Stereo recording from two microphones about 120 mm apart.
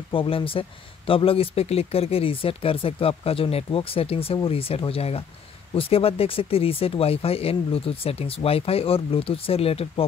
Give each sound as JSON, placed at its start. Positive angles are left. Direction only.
{"t": 0.1, "sound": "speech", "side_deg": 45}